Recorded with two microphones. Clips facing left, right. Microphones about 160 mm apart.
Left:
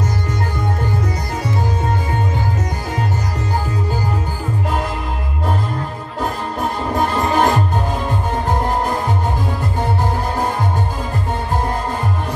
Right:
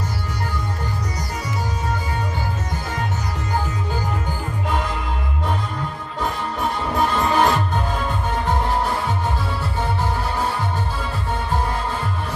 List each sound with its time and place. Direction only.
6.2 s music: 40° left (ahead or behind)